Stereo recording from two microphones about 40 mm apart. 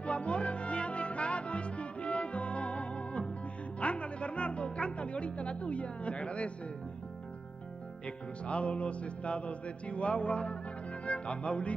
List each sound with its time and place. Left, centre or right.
0.0 s music: left
8.5 s music: left
11.1 s speech: left